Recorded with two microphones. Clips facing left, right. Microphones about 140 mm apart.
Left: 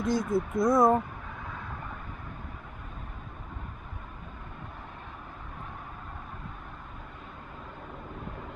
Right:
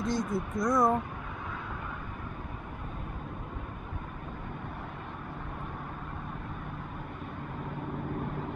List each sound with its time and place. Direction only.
0.0 s speech: centre (ahead or behind)
0.7 s speech: 25° left (ahead or behind)